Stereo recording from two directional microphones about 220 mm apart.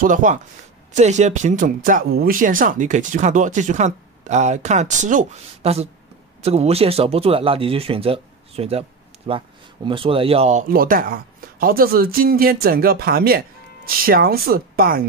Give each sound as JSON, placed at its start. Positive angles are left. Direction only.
{"t": 0.0, "sound": "speech", "side_deg": -35}